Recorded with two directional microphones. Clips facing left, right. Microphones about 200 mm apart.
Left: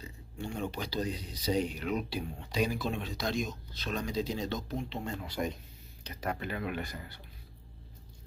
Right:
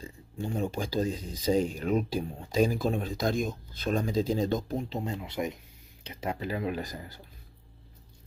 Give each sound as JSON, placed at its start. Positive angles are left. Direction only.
{"t": 0.4, "sound": "speech", "side_deg": -40}
{"t": 4.7, "sound": "speech", "side_deg": -35}